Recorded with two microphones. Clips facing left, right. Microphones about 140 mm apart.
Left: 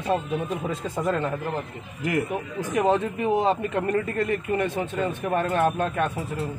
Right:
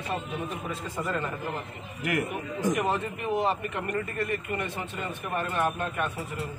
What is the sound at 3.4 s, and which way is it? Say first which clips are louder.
A man's voice: left 5 dB; 90° left.